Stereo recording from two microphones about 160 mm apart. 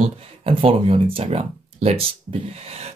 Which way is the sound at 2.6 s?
40° right (ahead or behind).